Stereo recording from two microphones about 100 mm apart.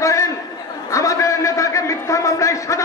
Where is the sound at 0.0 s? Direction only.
30° left (ahead or behind).